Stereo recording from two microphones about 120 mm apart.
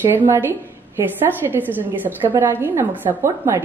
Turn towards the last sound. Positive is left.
turn(degrees=-25)  # may be behind; listen again after turning